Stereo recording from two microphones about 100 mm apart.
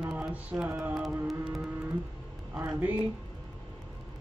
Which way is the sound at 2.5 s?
15° right (ahead or behind).